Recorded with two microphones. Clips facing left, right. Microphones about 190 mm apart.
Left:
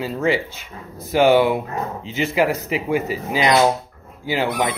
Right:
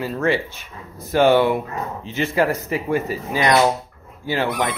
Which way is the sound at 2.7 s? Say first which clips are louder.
Left 1 dB; 15° left (ahead or behind).